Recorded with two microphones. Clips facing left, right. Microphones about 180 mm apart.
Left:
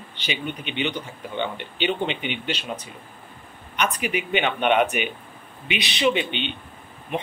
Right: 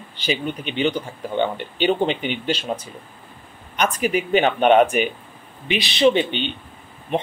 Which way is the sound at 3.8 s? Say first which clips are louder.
Right 4 dB; 35° right (ahead or behind).